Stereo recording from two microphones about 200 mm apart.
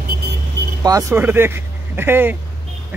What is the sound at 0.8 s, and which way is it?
Speech, 15° right (ahead or behind).